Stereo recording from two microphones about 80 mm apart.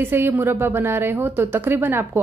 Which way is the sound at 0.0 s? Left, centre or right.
Right.